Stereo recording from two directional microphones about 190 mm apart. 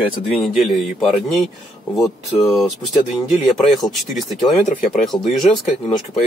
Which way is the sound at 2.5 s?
Centre (ahead or behind).